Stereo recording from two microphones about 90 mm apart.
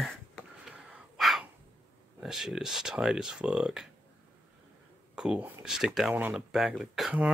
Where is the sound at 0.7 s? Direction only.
Centre (ahead or behind).